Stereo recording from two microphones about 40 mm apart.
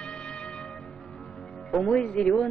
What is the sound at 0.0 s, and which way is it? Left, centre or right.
Music, left.